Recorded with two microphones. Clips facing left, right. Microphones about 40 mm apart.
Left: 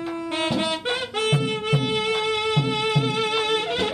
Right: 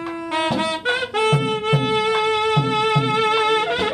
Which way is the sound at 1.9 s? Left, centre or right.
Centre.